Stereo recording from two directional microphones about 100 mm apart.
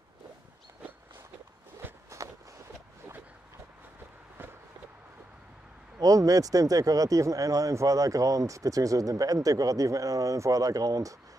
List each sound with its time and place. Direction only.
1.8 s walk: 20° right (ahead or behind)
5.9 s speech: 35° right (ahead or behind)